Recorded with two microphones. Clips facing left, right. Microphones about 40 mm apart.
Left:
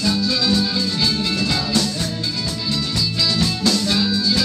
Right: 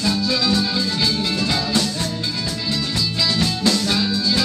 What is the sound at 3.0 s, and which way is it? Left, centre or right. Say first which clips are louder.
Music: even; centre.